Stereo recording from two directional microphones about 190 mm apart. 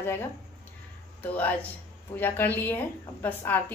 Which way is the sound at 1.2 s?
10° left (ahead or behind).